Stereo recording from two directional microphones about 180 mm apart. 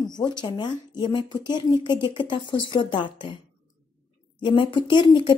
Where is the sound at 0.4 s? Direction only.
25° left (ahead or behind).